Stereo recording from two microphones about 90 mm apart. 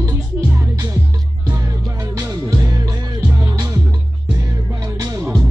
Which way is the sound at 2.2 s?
40° right (ahead or behind).